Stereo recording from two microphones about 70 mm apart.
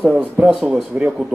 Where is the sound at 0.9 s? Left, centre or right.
Right.